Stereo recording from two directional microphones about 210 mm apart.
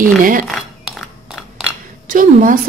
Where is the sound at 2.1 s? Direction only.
40° right (ahead or behind).